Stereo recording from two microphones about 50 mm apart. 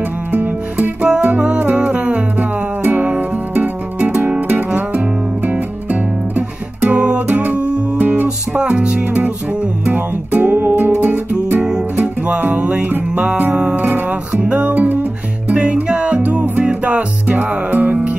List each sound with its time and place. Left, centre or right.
0.3 s music: right
5.5 s guitar: right
9.8 s music: right
12.4 s music: right